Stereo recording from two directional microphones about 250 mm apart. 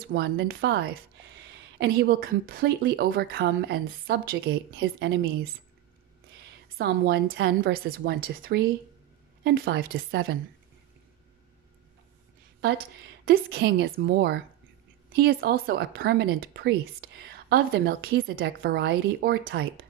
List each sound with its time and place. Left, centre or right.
0.1 s speech: right
6.8 s speech: right
12.6 s speech: right